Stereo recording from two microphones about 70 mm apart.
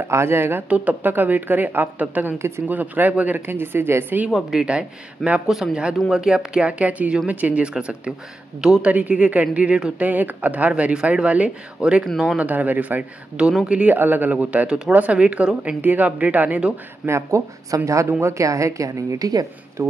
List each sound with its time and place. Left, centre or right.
0.1 s speech: right
0.7 s speech: centre
2.3 s speech: right
2.7 s speech: right
4.3 s speech: centre
8.8 s speech: centre
10.0 s speech: right
12.0 s speech: centre
12.4 s speech: right
17.0 s a woman's voice: right
19.8 s speech: right